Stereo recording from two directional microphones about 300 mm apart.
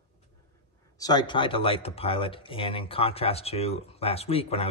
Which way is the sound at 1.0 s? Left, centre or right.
Centre.